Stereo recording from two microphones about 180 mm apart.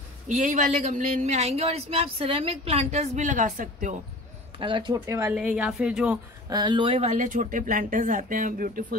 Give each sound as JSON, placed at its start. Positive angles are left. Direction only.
{"t": 0.3, "sound": "a woman's voice", "side_deg": -45}
{"t": 4.6, "sound": "speech", "side_deg": -25}
{"t": 5.3, "sound": "a woman's voice", "side_deg": -5}
{"t": 6.5, "sound": "speech", "side_deg": -25}